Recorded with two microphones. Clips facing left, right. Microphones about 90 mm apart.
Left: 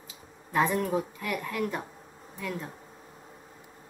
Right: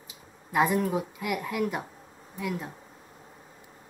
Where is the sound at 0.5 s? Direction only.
10° right (ahead or behind).